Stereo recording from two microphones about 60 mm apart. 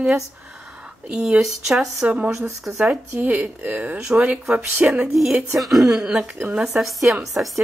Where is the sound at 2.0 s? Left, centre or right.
Centre.